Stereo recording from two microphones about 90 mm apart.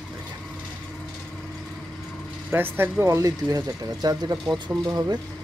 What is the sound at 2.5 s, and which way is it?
Speech, 25° right (ahead or behind).